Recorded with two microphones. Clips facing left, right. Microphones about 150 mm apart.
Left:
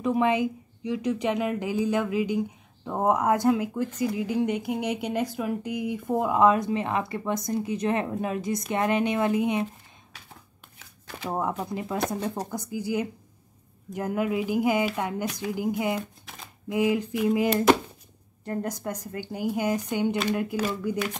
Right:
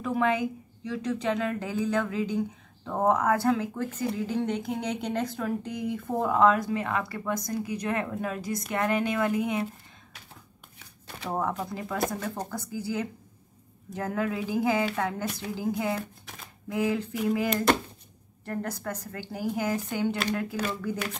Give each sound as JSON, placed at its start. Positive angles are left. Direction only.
{"t": 0.0, "sound": "speech", "side_deg": 20}
{"t": 11.2, "sound": "speech", "side_deg": 15}
{"t": 12.5, "sound": "speech", "side_deg": 15}
{"t": 18.4, "sound": "speech", "side_deg": 20}